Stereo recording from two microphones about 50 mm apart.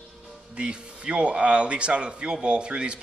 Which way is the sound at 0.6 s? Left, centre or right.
Centre.